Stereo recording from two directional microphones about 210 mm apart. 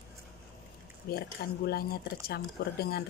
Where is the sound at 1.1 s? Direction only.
45° left (ahead or behind).